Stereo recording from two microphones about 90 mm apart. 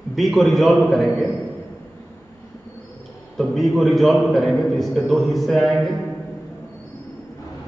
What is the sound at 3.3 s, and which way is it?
A man's voice, centre (ahead or behind).